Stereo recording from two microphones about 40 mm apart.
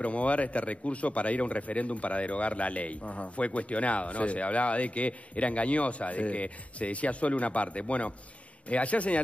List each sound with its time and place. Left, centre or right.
0.0 s speech: left